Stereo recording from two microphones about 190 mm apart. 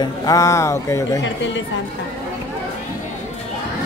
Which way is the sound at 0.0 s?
20° left (ahead or behind).